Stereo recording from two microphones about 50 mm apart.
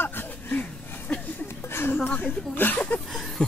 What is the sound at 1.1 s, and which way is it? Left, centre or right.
Speech, centre.